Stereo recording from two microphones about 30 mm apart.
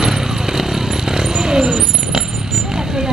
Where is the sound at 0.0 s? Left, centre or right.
Centre.